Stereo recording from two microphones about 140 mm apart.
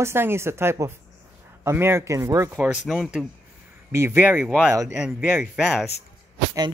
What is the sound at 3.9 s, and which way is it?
Speech, 20° right (ahead or behind).